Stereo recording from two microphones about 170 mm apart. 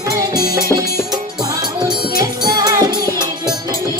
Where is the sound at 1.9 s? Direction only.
25° right (ahead or behind).